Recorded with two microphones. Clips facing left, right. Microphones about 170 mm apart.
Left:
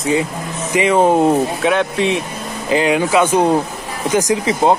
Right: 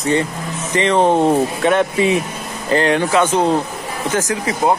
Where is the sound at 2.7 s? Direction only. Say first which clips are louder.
Left 1 dB; 10° left (ahead or behind).